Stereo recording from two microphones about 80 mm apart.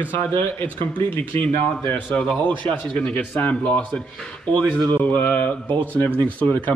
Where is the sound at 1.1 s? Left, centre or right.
Left.